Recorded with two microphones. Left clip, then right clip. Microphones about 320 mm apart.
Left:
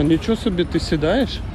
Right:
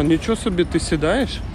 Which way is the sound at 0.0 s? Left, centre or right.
Centre.